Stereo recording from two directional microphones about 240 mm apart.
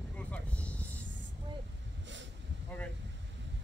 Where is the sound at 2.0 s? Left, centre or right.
Right.